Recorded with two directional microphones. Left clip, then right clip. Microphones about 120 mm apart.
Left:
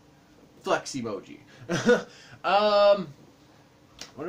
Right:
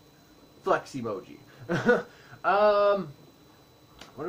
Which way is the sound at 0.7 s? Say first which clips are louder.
Even; 20° left (ahead or behind).